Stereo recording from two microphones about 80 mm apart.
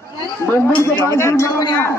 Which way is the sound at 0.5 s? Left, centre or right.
Left.